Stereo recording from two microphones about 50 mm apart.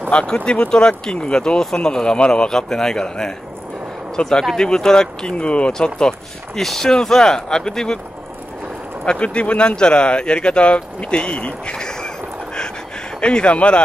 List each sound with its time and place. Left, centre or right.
0.1 s speech: left
9.0 s speech: centre
11.7 s a sound: centre
13.2 s speech: centre